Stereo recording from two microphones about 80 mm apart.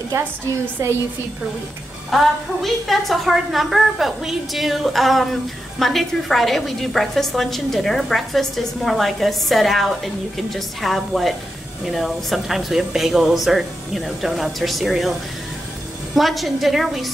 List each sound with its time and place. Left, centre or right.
0.8 s a woman's voice: right
2.0 s a woman's voice: centre
16.2 s a woman's voice: centre